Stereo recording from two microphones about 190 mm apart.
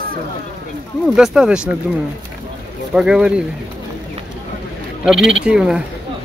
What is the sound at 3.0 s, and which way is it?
Speech, 5° right (ahead or behind).